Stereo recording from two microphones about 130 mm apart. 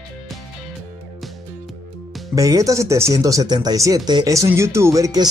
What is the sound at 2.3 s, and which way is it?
Speech, 25° right (ahead or behind).